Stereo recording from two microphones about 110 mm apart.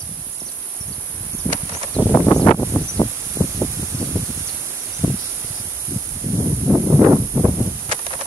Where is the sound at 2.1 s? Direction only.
30° left (ahead or behind).